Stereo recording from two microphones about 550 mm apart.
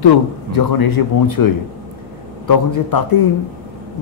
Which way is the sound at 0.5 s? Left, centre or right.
Left.